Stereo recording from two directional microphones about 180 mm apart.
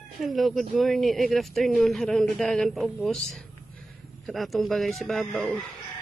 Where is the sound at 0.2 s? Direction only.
Centre (ahead or behind).